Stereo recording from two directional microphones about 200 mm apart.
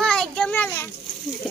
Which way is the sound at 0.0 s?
5° left (ahead or behind).